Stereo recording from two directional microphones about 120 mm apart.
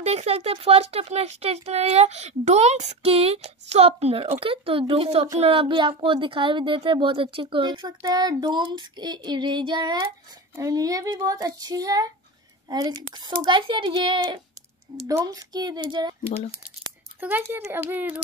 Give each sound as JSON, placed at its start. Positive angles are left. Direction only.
{"t": 0.0, "sound": "a woman's voice", "side_deg": -65}
{"t": 10.5, "sound": "a woman's voice", "side_deg": -30}
{"t": 15.0, "sound": "a woman's voice", "side_deg": -30}
{"t": 17.2, "sound": "speech", "side_deg": -15}